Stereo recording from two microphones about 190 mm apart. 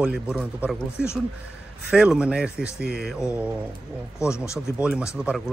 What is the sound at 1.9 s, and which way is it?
Speech, 5° right (ahead or behind).